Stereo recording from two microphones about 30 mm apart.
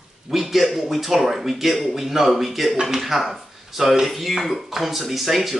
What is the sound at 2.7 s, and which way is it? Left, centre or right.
Speech, centre.